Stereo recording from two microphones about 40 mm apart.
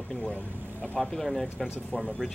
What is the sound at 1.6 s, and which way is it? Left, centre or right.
Speech, centre.